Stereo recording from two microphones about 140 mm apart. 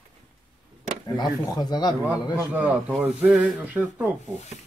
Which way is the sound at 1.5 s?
30° left (ahead or behind).